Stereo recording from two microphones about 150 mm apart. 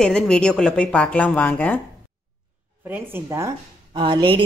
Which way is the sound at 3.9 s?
35° right (ahead or behind).